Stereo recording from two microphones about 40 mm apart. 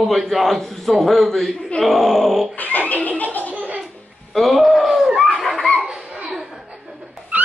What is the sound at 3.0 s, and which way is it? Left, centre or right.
Chuckle, left.